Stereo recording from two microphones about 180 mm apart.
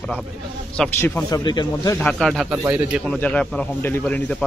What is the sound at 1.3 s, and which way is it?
Speech, 25° left (ahead or behind).